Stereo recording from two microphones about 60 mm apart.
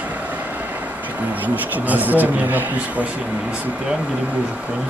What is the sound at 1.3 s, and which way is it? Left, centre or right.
Speech, right.